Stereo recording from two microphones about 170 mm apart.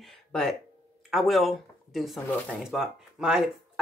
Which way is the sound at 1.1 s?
Centre (ahead or behind).